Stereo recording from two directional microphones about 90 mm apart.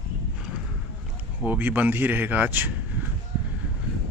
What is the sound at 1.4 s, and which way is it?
A man's voice, 20° right (ahead or behind).